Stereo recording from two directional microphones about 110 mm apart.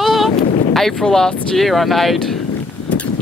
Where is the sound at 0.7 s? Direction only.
Centre (ahead or behind).